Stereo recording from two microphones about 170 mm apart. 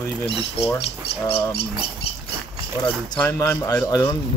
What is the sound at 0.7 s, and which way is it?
Speech, 35° left (ahead or behind).